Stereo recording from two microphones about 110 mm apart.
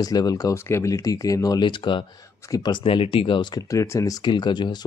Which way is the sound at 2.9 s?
55° left (ahead or behind).